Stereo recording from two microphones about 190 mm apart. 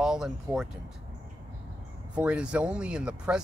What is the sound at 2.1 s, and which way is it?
Speech, 5° right (ahead or behind).